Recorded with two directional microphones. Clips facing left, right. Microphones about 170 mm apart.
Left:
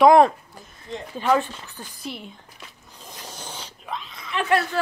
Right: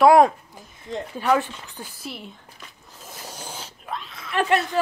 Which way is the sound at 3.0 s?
5° right (ahead or behind).